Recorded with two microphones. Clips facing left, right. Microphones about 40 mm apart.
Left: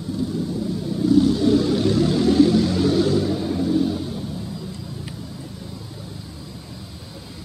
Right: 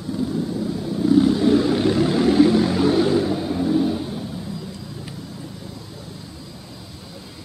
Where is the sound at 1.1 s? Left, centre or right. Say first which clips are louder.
Right 1 dB; centre.